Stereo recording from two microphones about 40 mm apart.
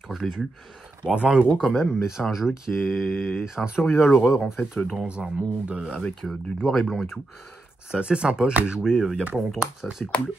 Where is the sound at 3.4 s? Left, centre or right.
Centre.